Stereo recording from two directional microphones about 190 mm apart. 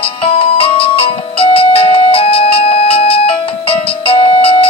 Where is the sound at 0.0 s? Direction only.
30° left (ahead or behind).